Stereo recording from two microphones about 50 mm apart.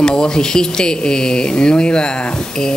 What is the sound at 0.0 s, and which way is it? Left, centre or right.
Speech, centre.